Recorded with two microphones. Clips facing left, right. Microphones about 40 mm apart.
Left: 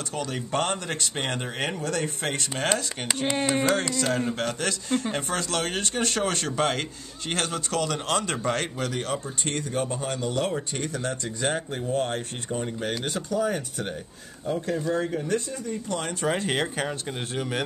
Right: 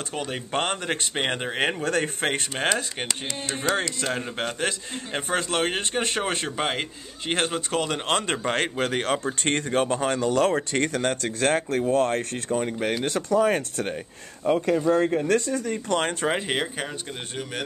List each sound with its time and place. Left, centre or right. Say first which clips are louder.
0.1 s speech: even; right
3.4 s speech: left 2 dB; left
3.9 s a man's voice: left 3 dB; right
13.4 s speech: right 4 dB; right
16.0 s a man's voice: right 5 dB; right
16.3 s a man's voice: right 1 dB; right
16.5 s speech: left 1 dB; centre